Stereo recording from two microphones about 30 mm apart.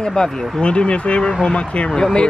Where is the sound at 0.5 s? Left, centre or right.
Left.